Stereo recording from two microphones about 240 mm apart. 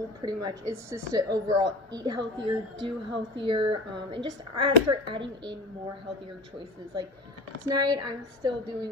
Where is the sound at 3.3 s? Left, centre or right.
Right.